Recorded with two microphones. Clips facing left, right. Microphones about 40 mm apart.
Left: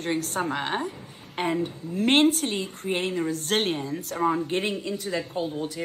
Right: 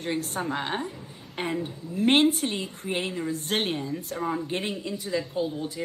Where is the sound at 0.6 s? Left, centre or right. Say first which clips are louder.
Left 2 dB; centre.